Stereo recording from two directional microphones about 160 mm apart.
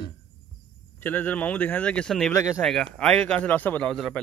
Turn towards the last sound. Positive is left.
turn(degrees=5)  # may be behind; listen again after turning